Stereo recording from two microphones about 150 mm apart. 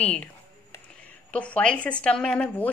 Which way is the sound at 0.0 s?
5° left (ahead or behind).